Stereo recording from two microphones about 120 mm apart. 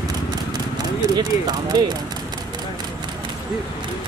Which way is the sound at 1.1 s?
35° right (ahead or behind).